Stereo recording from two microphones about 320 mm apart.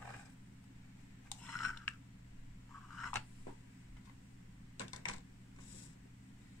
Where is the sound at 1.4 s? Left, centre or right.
Centre.